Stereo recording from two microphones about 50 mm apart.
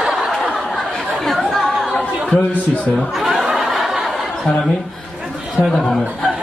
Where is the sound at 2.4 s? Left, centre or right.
Left.